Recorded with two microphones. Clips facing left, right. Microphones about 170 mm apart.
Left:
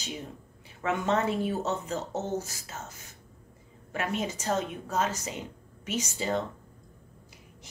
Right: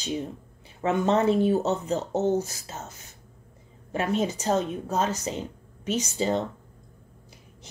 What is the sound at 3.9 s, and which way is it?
A woman's voice, 30° right (ahead or behind).